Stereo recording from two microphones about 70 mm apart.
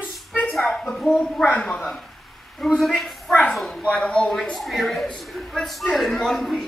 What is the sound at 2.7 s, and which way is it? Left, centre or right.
A woman's voice, centre.